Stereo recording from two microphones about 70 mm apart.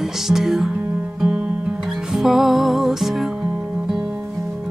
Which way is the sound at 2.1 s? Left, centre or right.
Centre.